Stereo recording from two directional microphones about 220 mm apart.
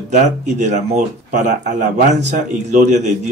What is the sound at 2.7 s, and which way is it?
Speech, 35° right (ahead or behind).